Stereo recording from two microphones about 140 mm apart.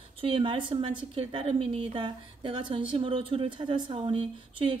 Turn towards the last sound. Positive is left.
turn(degrees=-40)  # may be behind; listen again after turning